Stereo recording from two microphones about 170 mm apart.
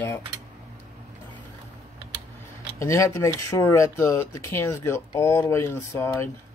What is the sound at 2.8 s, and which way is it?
Speech, 15° left (ahead or behind).